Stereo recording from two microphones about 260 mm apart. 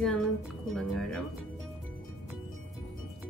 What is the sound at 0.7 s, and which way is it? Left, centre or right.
Speech, centre.